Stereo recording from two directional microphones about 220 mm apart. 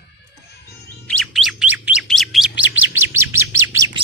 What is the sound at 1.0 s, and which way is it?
Chirp, centre (ahead or behind).